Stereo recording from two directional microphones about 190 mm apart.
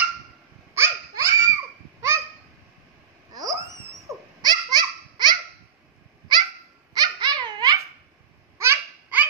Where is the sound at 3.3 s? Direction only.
20° right (ahead or behind).